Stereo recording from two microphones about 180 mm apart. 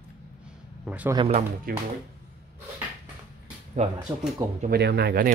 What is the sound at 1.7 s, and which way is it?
Speech, 55° right (ahead or behind).